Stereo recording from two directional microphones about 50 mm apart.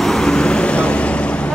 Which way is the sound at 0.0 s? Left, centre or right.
Centre.